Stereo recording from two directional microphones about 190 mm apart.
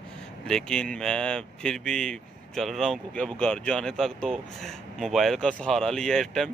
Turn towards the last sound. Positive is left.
turn(degrees=5)  # may be behind; listen again after turning